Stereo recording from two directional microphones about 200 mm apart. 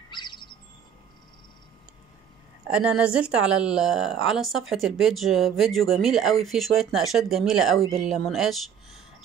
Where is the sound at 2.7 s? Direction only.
5° right (ahead or behind).